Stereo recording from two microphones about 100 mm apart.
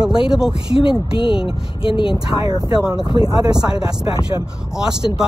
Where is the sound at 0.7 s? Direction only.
60° left (ahead or behind).